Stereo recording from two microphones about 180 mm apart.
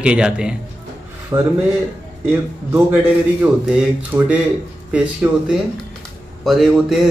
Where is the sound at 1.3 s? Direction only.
25° right (ahead or behind).